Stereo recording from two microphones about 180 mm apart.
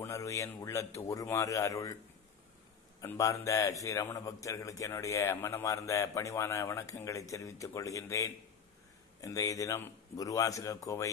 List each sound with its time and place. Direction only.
0.0 s a man's voice: 15° left (ahead or behind)
3.0 s a man's voice: 15° left (ahead or behind)